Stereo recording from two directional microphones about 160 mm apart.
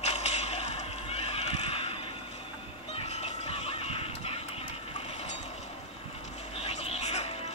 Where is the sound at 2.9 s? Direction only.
40° left (ahead or behind).